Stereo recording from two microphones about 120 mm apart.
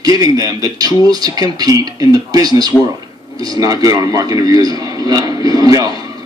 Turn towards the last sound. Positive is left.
turn(degrees=-35)  # may be behind; listen again after turning